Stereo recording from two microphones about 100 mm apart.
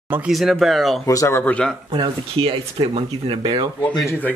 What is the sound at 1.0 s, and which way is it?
Speech, 30° left (ahead or behind).